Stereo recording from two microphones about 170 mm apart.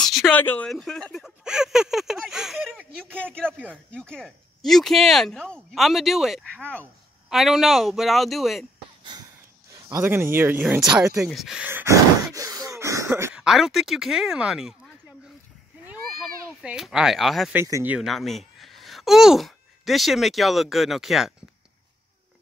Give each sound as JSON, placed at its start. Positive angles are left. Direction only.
{"t": 0.0, "sound": "a sound", "side_deg": 0}
{"t": 3.7, "sound": "speech", "side_deg": 5}
{"t": 6.5, "sound": "speech", "side_deg": 10}
{"t": 9.1, "sound": "a sound", "side_deg": -25}
{"t": 9.7, "sound": "speech", "side_deg": -20}
{"t": 13.3, "sound": "speech", "side_deg": -5}
{"t": 15.9, "sound": "cat", "side_deg": -5}
{"t": 17.6, "sound": "speech", "side_deg": -15}
{"t": 17.9, "sound": "speech", "side_deg": 0}